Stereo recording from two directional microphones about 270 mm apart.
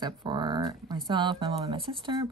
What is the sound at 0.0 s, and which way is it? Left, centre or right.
Speech, centre.